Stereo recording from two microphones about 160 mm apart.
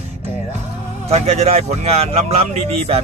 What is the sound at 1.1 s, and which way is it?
Speech, 40° right (ahead or behind).